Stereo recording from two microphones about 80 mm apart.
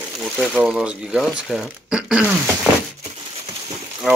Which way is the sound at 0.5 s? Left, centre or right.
Centre.